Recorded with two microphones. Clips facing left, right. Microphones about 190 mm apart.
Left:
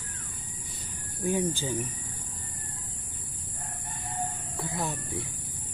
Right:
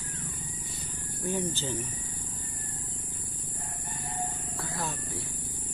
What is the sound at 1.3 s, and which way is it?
Speech, 10° left (ahead or behind).